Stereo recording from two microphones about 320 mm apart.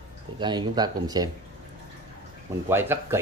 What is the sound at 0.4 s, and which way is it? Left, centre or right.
Speech, centre.